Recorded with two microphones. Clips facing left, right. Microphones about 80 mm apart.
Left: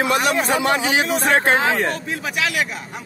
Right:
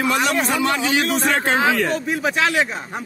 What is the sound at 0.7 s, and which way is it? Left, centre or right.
Speech, centre.